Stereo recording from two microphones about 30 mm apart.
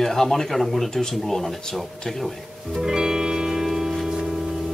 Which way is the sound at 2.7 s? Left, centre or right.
Centre.